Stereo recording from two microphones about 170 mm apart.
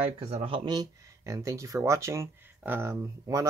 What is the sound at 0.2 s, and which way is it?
Speech, 35° right (ahead or behind).